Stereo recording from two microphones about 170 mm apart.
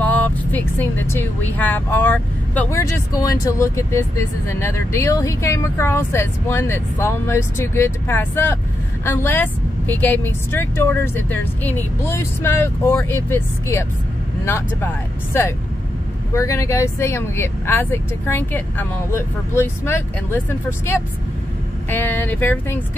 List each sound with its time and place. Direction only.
0.0 s speech: 10° left (ahead or behind)
2.8 s speech: 20° left (ahead or behind)